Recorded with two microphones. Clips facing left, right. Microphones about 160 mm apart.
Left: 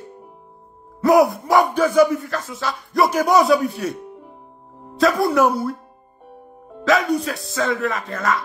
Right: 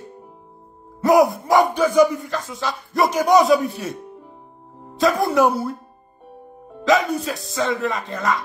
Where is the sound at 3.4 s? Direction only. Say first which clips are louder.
Even; centre (ahead or behind).